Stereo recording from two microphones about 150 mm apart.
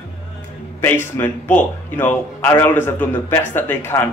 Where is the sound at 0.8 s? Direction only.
15° left (ahead or behind).